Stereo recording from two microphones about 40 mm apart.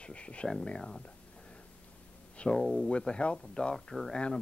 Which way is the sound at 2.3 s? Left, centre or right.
Left.